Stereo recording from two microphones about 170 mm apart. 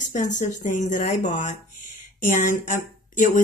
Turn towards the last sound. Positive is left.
turn(degrees=50)  # may be behind; listen again after turning